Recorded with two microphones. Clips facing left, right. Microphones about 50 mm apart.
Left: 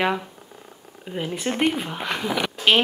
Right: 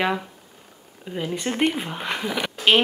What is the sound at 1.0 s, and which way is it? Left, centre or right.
Speech, centre.